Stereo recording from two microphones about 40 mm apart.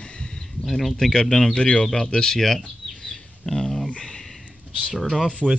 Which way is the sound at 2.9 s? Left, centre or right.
Centre.